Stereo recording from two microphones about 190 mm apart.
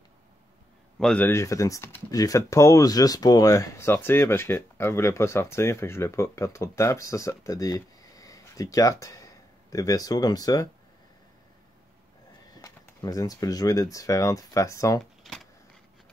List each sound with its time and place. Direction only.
0.9 s speech: 5° left (ahead or behind)
12.5 s speech: 20° left (ahead or behind)
15.0 s a sound: centre (ahead or behind)